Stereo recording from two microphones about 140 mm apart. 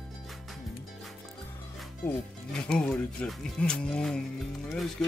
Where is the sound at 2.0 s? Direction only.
5° left (ahead or behind).